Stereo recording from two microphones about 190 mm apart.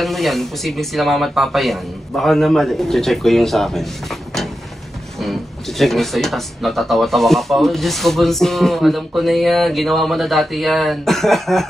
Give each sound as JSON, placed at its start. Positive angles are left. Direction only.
{"t": 0.0, "sound": "speech", "side_deg": 0}